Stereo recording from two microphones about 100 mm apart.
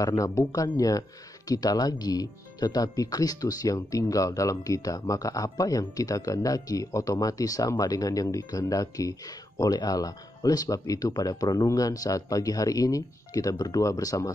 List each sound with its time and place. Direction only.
0.0 s speech: 35° left (ahead or behind)